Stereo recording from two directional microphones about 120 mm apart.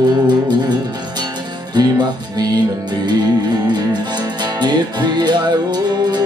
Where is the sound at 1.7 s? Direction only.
35° right (ahead or behind).